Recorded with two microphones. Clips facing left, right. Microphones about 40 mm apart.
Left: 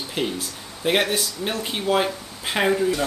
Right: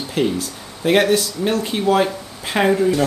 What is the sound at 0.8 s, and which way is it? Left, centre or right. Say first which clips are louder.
Stir: right 6 dB; centre.